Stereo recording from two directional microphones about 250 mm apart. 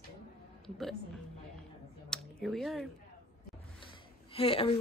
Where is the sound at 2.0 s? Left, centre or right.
Centre.